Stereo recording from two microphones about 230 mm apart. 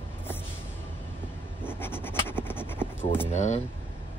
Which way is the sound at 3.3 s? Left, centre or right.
Left.